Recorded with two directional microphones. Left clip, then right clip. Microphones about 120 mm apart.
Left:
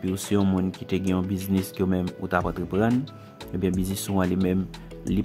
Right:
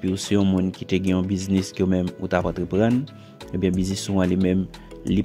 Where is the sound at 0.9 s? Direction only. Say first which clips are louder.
Right 4 dB; 20° right (ahead or behind).